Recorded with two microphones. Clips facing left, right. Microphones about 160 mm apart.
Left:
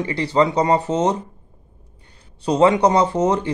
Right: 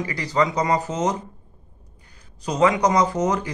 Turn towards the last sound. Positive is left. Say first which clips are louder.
# left 3 dB
turn(degrees=25)  # may be behind; listen again after turning